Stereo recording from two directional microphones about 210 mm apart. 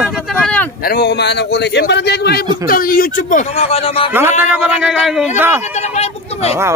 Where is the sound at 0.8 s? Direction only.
50° left (ahead or behind); by 4.1 s 25° left (ahead or behind).